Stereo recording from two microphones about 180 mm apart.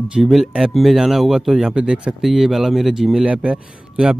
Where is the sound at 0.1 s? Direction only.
Centre (ahead or behind).